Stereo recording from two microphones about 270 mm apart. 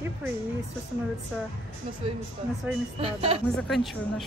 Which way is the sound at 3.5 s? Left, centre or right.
Centre.